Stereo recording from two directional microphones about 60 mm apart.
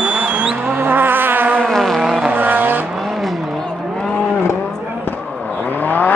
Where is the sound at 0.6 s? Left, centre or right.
Right.